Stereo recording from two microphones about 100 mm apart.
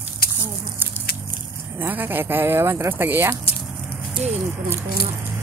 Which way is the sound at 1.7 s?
20° right (ahead or behind).